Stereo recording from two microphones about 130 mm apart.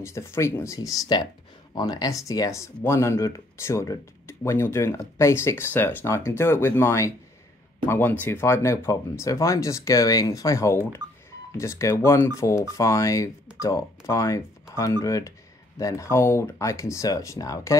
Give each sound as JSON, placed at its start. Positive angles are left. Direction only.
{"t": 0.0, "sound": "speech", "side_deg": 20}